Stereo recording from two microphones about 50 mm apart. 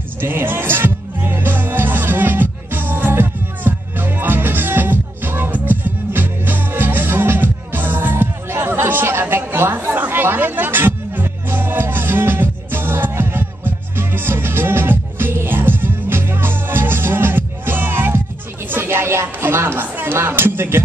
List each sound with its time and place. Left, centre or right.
0.2 s music: right
9.8 s music: right
19.2 s a sound: right